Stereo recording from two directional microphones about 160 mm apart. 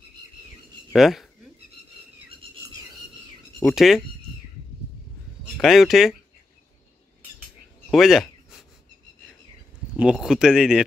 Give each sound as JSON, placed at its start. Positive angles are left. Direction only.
{"t": 0.9, "sound": "speech", "side_deg": 0}
{"t": 3.6, "sound": "speech", "side_deg": 0}
{"t": 5.6, "sound": "speech", "side_deg": 0}
{"t": 7.9, "sound": "a sound", "side_deg": 0}
{"t": 10.1, "sound": "speech", "side_deg": -5}